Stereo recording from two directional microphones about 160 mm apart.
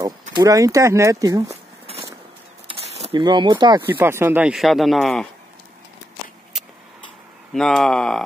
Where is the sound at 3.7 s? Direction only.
15° right (ahead or behind).